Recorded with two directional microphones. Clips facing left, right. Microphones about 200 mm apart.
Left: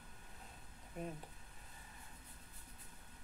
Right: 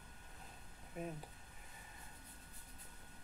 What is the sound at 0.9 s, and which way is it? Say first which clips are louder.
Speech: even; 5° right (ahead or behind).